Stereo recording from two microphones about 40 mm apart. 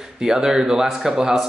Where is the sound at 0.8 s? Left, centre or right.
Centre.